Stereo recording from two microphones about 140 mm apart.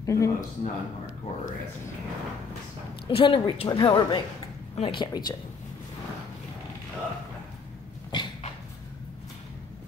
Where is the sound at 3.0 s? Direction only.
35° left (ahead or behind).